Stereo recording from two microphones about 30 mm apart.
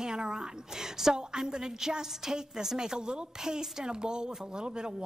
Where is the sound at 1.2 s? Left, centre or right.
Right.